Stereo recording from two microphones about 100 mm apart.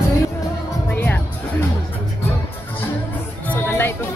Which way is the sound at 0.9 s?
20° left (ahead or behind).